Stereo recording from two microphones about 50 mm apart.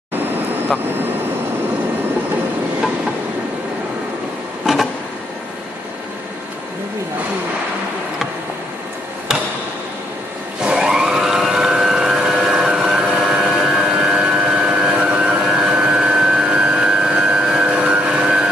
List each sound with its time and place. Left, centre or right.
10.6 s a sound: centre
13.7 s vehicle: centre
16.4 s vehicle: right
16.8 s vehicle: centre